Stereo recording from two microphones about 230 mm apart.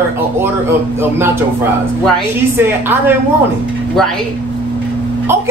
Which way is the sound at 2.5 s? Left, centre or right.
Centre.